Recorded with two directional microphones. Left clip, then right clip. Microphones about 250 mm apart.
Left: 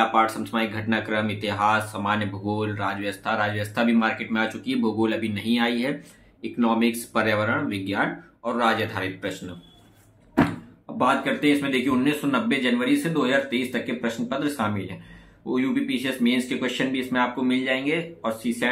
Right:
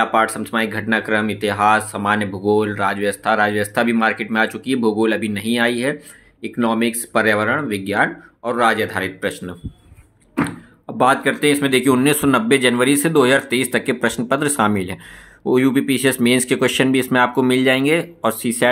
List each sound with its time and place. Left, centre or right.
0.0 s speech: right
11.0 s speech: right